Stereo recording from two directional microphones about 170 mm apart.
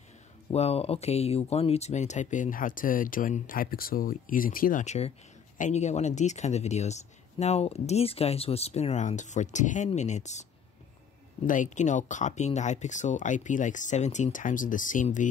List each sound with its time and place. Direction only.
0.5 s speech: 40° left (ahead or behind)
11.4 s speech: 50° left (ahead or behind)